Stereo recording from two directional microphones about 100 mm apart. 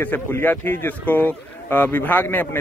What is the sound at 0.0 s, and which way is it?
Speech, 20° left (ahead or behind).